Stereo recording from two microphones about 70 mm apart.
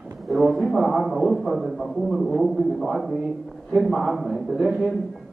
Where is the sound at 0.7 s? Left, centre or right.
Centre.